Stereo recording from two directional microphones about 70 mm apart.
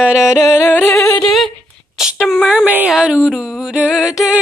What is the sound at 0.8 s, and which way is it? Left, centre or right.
Singing, left.